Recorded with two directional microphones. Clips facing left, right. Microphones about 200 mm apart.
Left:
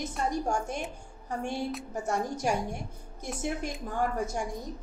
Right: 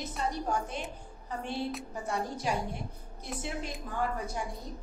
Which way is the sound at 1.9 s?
45° left (ahead or behind).